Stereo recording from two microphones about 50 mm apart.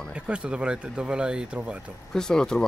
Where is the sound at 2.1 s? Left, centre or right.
Centre.